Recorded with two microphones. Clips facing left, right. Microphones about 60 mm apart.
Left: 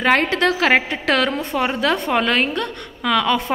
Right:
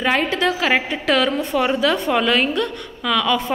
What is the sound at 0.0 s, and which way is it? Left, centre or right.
A woman's voice, left.